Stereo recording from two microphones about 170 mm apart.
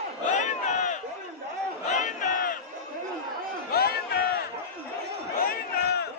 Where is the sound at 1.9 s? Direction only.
45° left (ahead or behind).